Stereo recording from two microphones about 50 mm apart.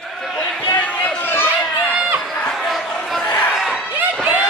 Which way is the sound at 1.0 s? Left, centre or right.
Left.